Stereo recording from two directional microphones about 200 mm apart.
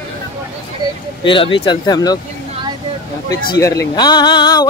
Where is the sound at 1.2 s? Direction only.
25° left (ahead or behind).